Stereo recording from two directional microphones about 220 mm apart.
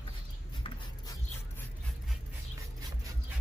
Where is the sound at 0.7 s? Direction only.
20° left (ahead or behind).